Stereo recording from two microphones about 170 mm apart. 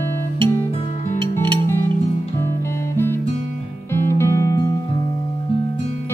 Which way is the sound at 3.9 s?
15° left (ahead or behind).